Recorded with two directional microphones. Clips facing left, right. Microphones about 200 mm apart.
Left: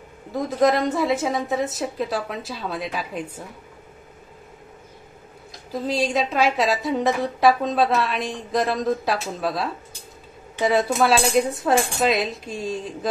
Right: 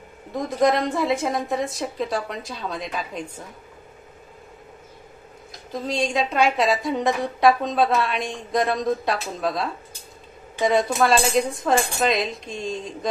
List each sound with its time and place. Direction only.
0.3 s a woman's voice: centre (ahead or behind)
5.7 s a woman's voice: 5° left (ahead or behind)